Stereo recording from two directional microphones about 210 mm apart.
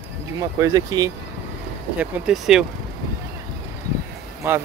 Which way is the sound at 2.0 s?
5° right (ahead or behind).